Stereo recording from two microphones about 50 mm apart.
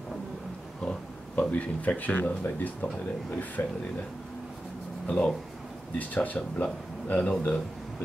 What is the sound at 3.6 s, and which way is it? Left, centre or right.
Speech, left.